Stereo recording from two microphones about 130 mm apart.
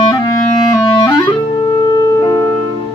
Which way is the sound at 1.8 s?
30° left (ahead or behind).